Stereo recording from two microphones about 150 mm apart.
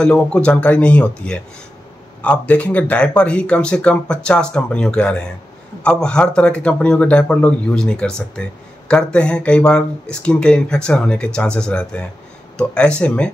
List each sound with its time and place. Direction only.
0.0 s a man's voice: 5° left (ahead or behind)